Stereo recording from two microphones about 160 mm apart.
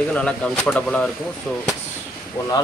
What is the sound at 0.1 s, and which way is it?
Speech, 5° left (ahead or behind).